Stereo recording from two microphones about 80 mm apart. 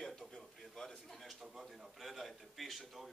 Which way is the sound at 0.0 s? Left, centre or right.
Centre.